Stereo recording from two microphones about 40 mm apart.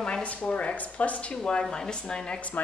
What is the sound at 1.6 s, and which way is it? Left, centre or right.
Speech, centre.